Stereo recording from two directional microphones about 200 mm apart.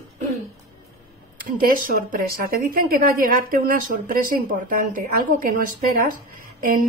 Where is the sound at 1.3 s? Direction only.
45° right (ahead or behind).